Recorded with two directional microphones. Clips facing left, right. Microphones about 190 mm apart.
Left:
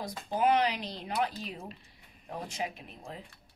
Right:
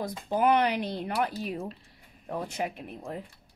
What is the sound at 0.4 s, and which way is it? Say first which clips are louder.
Speech: right 3 dB; 60° right (ahead or behind).